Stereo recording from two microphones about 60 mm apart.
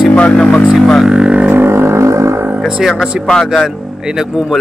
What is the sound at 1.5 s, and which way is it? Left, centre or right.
Music, right.